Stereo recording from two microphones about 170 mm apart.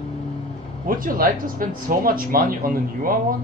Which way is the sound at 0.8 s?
55° right (ahead or behind).